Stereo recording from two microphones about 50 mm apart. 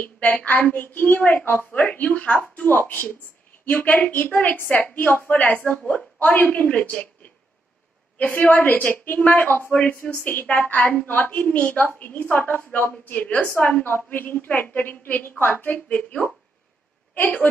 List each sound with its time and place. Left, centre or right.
0.0 s a woman's voice: left
8.4 s a woman's voice: left
10.4 s a woman's voice: left
12.4 s a woman's voice: left
17.1 s a woman's voice: left